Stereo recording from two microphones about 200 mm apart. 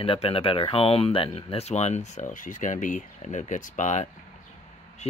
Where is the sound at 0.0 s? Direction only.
25° left (ahead or behind).